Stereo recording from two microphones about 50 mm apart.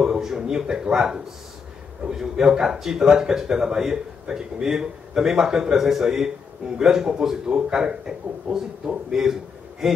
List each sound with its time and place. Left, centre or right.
0.0 s speech: centre